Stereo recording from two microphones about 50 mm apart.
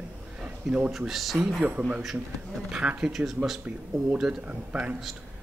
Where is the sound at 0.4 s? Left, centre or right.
Right.